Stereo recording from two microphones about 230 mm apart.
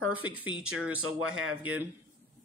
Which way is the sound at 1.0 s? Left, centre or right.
Right.